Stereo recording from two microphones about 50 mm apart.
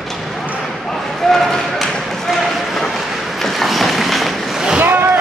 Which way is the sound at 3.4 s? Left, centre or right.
Centre.